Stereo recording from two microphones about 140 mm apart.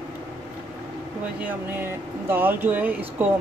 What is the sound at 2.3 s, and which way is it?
Speech, 15° right (ahead or behind).